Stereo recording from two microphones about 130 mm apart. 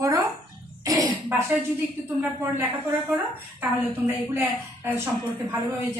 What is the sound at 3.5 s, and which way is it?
A woman's voice, 15° right (ahead or behind).